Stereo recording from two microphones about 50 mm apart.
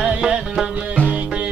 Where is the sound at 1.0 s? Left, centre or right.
Left.